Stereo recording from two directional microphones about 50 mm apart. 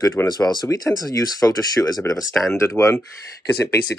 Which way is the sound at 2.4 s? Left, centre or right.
Centre.